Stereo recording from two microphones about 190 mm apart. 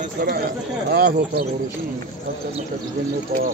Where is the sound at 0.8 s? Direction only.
55° right (ahead or behind).